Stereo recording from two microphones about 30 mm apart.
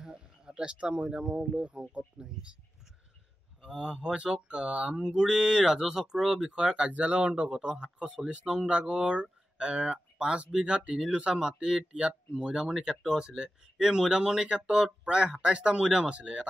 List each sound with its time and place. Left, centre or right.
0.0 s a sound: right
0.7 s speech: right
1.0 s speech: right
3.6 s speech: right
4.9 s speech: right
6.5 s speech: right
6.9 s speech: right
7.6 s speech: right
8.5 s speech: right
11.3 s speech: right
11.9 s speech: right; by 13.2 s centre
13.2 s speech: right
13.8 s speech: centre; by 16.4 s right